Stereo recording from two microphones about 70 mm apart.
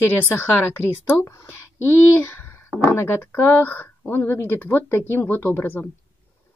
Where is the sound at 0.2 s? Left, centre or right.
Left.